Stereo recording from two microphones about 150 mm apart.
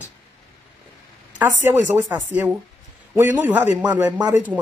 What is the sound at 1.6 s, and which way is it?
Speech, 15° right (ahead or behind).